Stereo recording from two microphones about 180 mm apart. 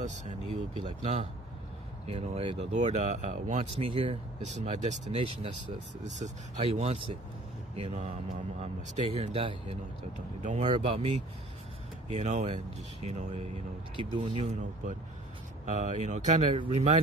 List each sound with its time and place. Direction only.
0.0 s speech: 40° right (ahead or behind)
3.8 s speech: 30° right (ahead or behind)
6.0 s speech: 40° right (ahead or behind)
10.4 s speech: 40° right (ahead or behind)
13.9 s speech: 30° right (ahead or behind)
15.6 s speech: 40° right (ahead or behind)
16.5 s speech: 30° right (ahead or behind)